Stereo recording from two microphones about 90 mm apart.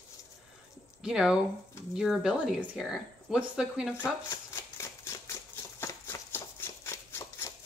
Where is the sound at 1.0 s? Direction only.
5° right (ahead or behind).